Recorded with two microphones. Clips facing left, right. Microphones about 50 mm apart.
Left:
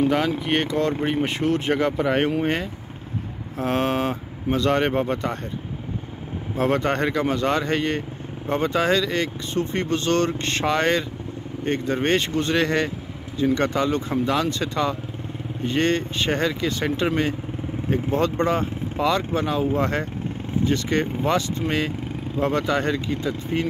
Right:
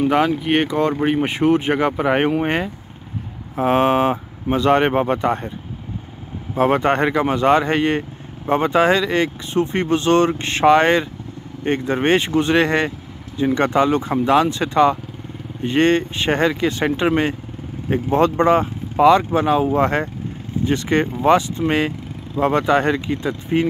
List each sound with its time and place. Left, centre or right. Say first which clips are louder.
0.4 s speech: right 4 dB; centre
6.5 s speech: right 5 dB; right